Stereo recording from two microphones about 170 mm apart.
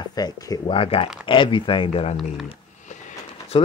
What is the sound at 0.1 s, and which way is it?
Speech, 20° left (ahead or behind).